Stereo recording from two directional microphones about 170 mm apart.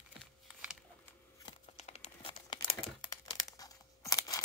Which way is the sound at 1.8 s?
40° left (ahead or behind).